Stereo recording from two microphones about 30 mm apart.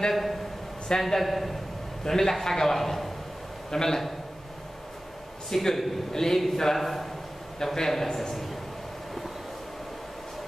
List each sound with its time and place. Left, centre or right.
0.1 s a man's voice: centre
2.0 s a man's voice: centre
5.5 s a man's voice: centre
7.5 s a man's voice: centre